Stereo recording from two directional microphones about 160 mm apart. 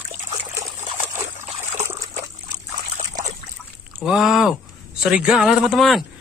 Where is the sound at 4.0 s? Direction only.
5° right (ahead or behind).